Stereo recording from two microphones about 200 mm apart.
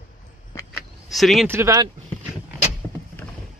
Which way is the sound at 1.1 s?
Centre (ahead or behind).